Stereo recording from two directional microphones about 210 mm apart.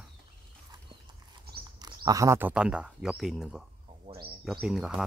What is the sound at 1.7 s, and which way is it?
Speech, 20° right (ahead or behind).